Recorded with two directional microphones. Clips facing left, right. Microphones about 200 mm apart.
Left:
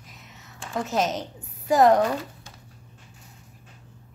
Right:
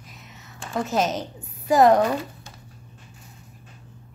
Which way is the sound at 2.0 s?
15° right (ahead or behind).